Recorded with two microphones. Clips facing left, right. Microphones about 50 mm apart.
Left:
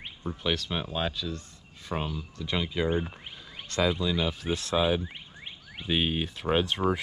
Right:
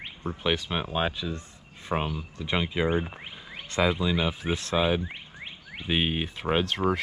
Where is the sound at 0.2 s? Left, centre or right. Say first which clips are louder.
Right 2 dB; centre.